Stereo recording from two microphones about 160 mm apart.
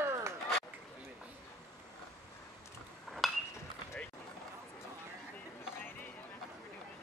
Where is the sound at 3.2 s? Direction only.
Centre (ahead or behind).